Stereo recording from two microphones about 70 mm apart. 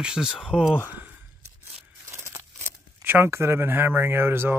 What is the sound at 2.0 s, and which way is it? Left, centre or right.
Tearing, right.